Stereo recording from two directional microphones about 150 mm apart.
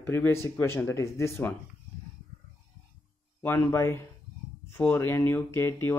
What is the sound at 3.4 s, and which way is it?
Speech, 15° left (ahead or behind).